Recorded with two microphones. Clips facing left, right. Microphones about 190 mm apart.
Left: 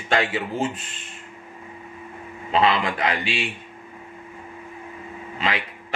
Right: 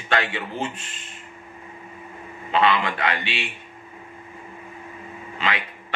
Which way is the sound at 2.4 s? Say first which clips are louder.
Even; 35° left (ahead or behind).